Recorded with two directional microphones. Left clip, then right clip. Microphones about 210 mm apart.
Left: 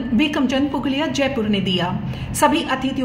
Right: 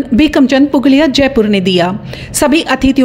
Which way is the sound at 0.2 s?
45° right (ahead or behind).